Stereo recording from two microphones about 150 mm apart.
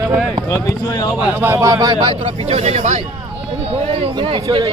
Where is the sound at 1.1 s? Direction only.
10° right (ahead or behind); by 3.1 s 50° right (ahead or behind).